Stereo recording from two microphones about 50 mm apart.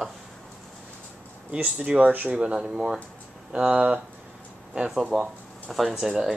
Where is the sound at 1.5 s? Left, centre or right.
Right.